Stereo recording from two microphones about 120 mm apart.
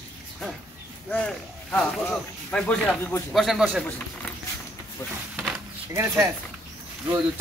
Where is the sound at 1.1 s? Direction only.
10° left (ahead or behind).